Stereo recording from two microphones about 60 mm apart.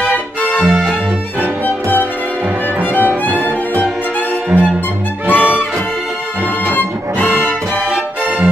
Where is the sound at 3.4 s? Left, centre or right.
Left.